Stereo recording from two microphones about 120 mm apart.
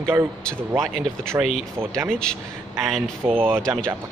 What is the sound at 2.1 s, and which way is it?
A man's voice, 5° left (ahead or behind).